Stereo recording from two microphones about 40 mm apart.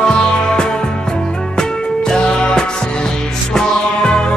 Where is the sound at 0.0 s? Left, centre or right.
Left.